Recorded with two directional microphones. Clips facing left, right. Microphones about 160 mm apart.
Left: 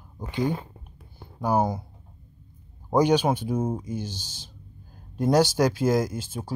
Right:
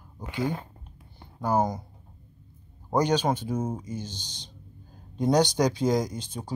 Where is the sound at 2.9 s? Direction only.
10° left (ahead or behind).